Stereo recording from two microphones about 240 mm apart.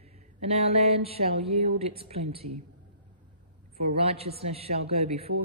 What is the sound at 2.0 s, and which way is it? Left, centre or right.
Speech, right.